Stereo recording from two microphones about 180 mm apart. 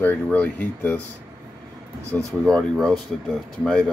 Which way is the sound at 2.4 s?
5° left (ahead or behind).